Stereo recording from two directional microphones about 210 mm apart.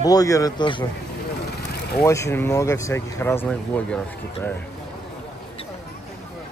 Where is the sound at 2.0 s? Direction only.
15° left (ahead or behind).